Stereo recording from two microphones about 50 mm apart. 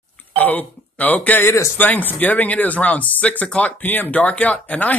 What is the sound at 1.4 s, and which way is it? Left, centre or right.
Speech, left.